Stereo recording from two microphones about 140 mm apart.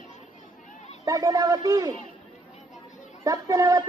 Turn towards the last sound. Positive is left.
turn(degrees=-25)  # may be behind; listen again after turning